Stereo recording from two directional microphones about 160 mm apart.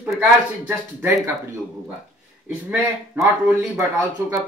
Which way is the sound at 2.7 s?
10° right (ahead or behind).